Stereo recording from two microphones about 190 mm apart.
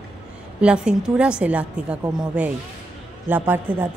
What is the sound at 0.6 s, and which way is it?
A woman's voice, 5° right (ahead or behind).